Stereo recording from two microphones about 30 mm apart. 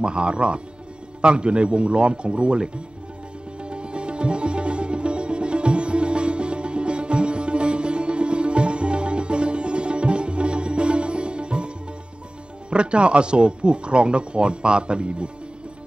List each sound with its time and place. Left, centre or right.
0.0 s speech: right
3.6 s sitar: right
12.6 s speech: right